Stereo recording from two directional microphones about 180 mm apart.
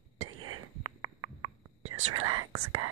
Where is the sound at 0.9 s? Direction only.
25° right (ahead or behind).